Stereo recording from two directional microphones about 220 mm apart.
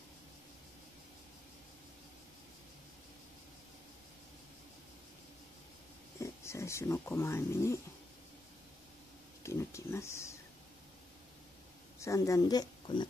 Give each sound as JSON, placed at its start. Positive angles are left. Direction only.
{"t": 6.1, "sound": "speech", "side_deg": 15}
{"t": 9.4, "sound": "speech", "side_deg": 10}
{"t": 12.0, "sound": "speech", "side_deg": 15}